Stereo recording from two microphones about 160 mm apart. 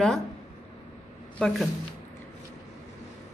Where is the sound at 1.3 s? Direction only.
5° left (ahead or behind).